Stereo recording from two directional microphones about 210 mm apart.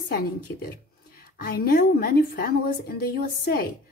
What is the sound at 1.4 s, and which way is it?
Speech, 45° left (ahead or behind).